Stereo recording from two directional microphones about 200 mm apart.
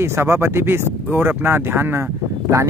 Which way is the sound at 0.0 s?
10° right (ahead or behind).